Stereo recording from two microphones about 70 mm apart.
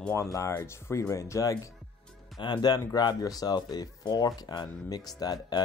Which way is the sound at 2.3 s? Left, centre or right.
Left.